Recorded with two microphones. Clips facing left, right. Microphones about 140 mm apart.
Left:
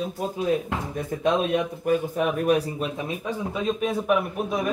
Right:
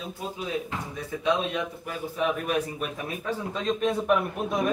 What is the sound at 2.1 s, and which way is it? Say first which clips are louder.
Speech: left 5 dB; 35° left (ahead or behind).